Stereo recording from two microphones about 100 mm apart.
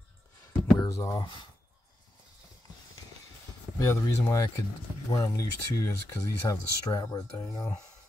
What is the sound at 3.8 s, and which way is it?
Speech, 30° left (ahead or behind).